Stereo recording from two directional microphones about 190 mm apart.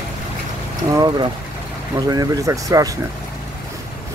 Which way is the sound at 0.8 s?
20° right (ahead or behind).